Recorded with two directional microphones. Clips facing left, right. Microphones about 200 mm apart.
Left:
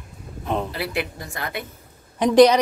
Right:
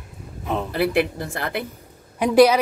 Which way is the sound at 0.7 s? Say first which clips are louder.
Right 7 dB; 55° right (ahead or behind).